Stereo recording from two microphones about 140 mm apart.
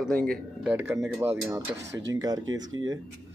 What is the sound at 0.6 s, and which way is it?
Speech, 15° right (ahead or behind).